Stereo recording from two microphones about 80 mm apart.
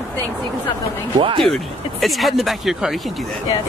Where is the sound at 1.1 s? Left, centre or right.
Right.